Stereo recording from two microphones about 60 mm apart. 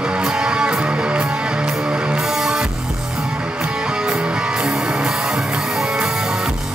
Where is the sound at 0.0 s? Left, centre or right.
Centre.